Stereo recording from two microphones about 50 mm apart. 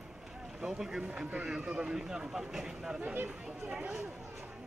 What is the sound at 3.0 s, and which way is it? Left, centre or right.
Speech, right.